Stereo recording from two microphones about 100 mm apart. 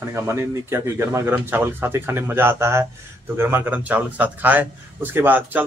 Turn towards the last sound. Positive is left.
turn(degrees=-20)  # may be behind; listen again after turning